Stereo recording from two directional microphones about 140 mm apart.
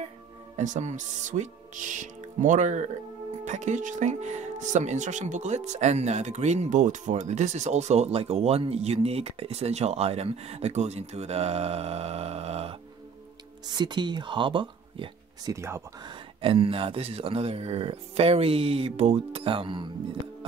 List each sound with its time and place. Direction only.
0.6 s speech: 55° right (ahead or behind)
13.7 s speech: 30° right (ahead or behind)
15.5 s speech: 20° right (ahead or behind)
16.0 s speech: 35° right (ahead or behind)